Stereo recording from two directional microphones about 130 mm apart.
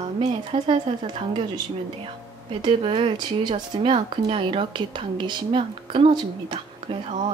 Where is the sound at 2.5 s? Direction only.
40° right (ahead or behind).